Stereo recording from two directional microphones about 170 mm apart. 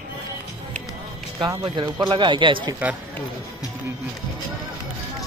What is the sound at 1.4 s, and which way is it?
Speech, 25° right (ahead or behind).